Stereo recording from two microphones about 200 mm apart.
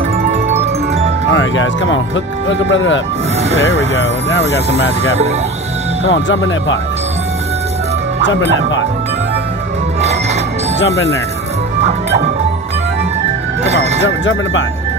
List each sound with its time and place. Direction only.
0.3 s music: 35° right (ahead or behind)
1.3 s speech: 75° left (ahead or behind)
6.0 s speech: 70° left (ahead or behind)
13.7 s speech: 30° right (ahead or behind)